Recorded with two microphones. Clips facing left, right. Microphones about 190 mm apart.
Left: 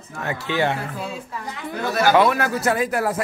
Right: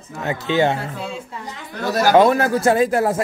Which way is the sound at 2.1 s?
30° right (ahead or behind).